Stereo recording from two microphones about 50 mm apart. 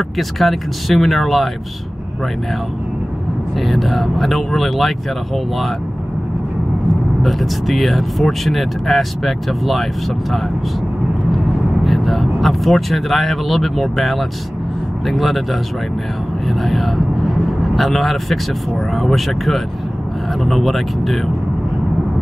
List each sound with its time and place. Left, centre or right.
0.2 s speech: centre
3.5 s speech: centre
7.2 s speech: centre
11.3 s speech: centre
16.4 s speech: centre